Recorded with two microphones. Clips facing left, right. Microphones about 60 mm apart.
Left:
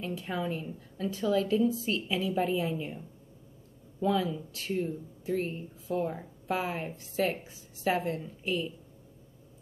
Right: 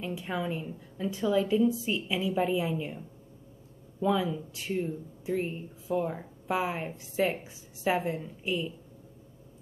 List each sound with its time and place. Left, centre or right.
0.1 s a woman's voice: centre
4.1 s speech: centre
5.9 s a woman's voice: right